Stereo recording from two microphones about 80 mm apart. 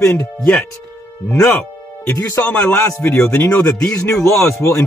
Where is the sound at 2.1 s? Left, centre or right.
Left.